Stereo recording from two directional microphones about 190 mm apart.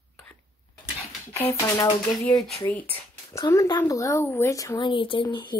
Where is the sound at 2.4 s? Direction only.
5° left (ahead or behind).